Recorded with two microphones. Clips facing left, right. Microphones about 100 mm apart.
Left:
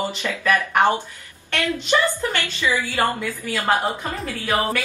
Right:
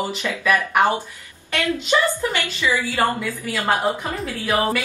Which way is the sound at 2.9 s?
Centre (ahead or behind).